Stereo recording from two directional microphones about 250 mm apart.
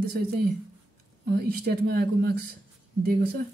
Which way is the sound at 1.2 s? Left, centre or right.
Right.